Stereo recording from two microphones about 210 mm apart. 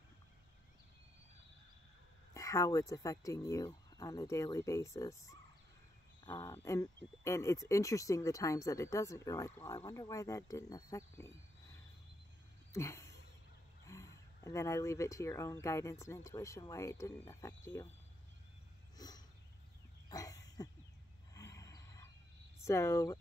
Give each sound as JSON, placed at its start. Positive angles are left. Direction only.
{"t": 2.3, "sound": "speech", "side_deg": 15}
{"t": 12.7, "sound": "a sound", "side_deg": 15}
{"t": 13.8, "sound": "speech", "side_deg": 15}
{"t": 18.9, "sound": "a sound", "side_deg": 20}
{"t": 21.3, "sound": "wild animals", "side_deg": 15}
{"t": 22.7, "sound": "speech", "side_deg": 15}